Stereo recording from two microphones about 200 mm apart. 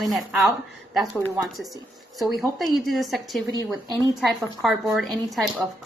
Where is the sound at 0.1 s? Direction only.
Centre (ahead or behind).